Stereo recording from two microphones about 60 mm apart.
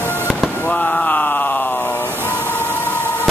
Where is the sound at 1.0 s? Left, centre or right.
Left.